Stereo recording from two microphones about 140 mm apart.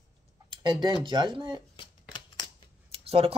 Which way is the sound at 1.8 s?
35° left (ahead or behind).